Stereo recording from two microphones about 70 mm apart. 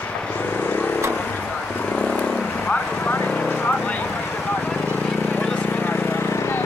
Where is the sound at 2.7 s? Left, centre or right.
Left.